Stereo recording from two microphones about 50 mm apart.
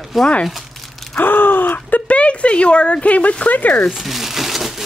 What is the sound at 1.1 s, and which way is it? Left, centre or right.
Speech, left.